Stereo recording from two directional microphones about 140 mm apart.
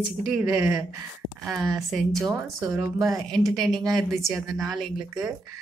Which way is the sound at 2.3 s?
15° right (ahead or behind).